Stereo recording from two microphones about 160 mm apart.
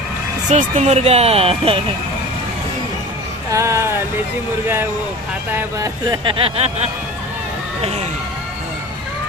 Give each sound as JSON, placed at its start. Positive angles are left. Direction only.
{"t": 0.5, "sound": "speech", "side_deg": -45}
{"t": 3.5, "sound": "speech", "side_deg": -15}
{"t": 5.5, "sound": "speech", "side_deg": -15}
{"t": 6.0, "sound": "speech", "side_deg": -30}